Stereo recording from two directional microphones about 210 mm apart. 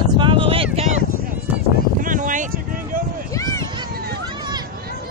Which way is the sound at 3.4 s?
15° left (ahead or behind).